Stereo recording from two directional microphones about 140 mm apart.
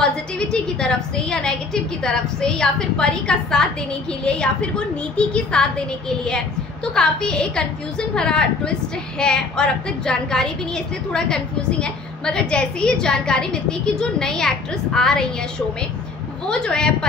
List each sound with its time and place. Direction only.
0.0 s a woman's voice: 5° left (ahead or behind)
16.4 s a woman's voice: 5° left (ahead or behind)